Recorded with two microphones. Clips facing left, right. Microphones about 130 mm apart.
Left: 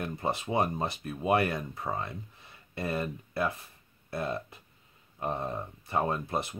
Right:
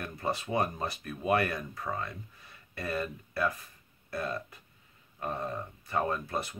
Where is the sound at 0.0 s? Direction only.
25° left (ahead or behind).